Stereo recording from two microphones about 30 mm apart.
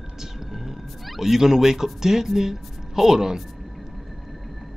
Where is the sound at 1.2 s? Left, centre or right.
Centre.